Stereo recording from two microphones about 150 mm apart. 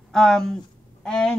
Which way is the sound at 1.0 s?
5° left (ahead or behind).